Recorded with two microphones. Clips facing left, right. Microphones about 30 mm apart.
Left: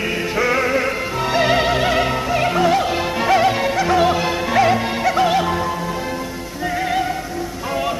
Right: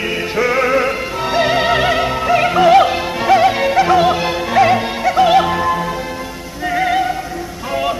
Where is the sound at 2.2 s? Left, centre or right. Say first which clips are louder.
Right 5 dB; centre.